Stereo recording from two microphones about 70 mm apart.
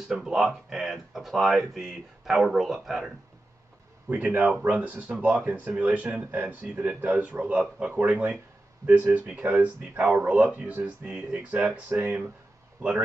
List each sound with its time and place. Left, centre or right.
0.2 s speech: centre
4.1 s speech: centre